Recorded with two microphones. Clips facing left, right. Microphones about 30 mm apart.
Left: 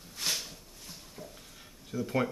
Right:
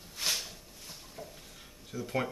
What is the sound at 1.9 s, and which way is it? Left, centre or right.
Speech, centre.